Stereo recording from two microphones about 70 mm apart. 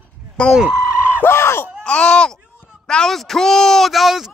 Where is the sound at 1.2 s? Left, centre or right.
Left.